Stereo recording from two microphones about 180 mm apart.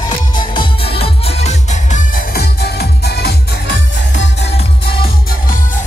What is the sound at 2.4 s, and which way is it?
Music, 65° left (ahead or behind).